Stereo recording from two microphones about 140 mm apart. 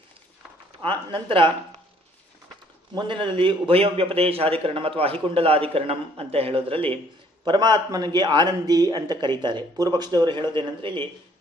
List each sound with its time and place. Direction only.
0.8 s speech: 35° right (ahead or behind)
2.9 s a man's voice: 35° right (ahead or behind)